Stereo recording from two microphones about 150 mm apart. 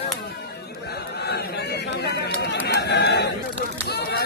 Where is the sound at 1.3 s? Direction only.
90° left.